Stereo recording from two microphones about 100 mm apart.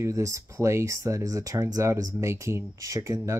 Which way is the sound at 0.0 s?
35° right (ahead or behind).